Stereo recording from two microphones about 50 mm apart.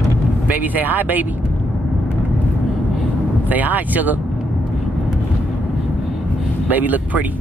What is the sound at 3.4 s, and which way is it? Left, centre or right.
Speech, right.